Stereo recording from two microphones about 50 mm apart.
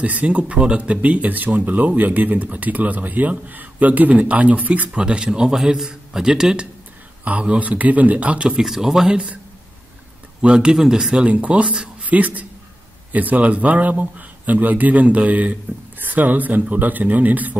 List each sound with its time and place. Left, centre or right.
0.0 s speech: right
4.9 s a man's voice: centre
7.2 s speech: right
8.6 s a man's voice: centre
10.4 s a man's voice: centre
11.2 s speech: right
12.0 s speech: right